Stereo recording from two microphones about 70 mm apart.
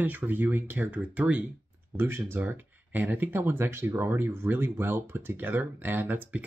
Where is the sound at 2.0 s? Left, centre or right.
Right.